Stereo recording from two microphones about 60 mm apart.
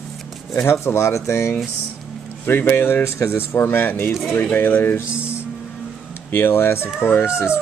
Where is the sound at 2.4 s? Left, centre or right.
Left.